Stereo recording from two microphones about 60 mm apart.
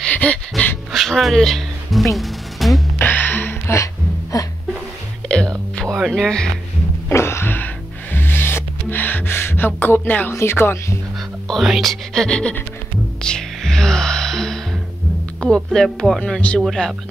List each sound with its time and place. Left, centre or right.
0.1 s dog: left
0.9 s music: centre
3.0 s music: left
3.7 s music: left
5.9 s music: centre
6.2 s speech: centre
7.1 s music: left
10.3 s speech: left
11.6 s speech: centre
13.2 s music: centre
15.4 s speech: centre
16.3 s speech: left